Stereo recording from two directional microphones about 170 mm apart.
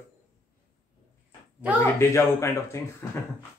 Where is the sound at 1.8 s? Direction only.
15° left (ahead or behind).